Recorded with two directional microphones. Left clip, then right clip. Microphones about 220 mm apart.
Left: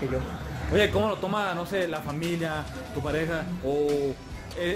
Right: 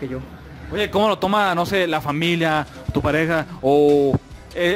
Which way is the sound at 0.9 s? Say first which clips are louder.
Right 9 dB; 45° right (ahead or behind).